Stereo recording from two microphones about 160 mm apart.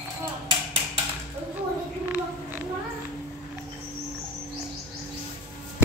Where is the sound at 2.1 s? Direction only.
10° right (ahead or behind).